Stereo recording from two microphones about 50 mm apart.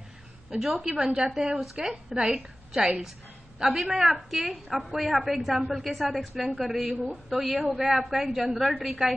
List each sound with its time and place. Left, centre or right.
0.5 s a woman's voice: centre
1.6 s a woman's voice: centre